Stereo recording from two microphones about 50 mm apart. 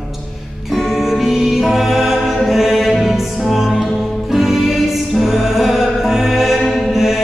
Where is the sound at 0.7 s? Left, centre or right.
Centre.